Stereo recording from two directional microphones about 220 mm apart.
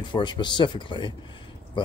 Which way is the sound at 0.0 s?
20° left (ahead or behind).